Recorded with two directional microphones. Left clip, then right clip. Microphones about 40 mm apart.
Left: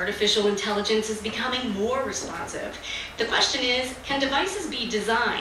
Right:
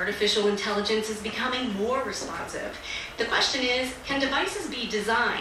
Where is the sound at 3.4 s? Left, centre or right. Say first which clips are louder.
Left 2 dB; centre.